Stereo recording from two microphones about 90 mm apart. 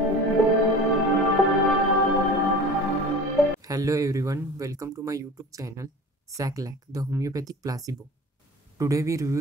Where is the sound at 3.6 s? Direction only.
40° right (ahead or behind).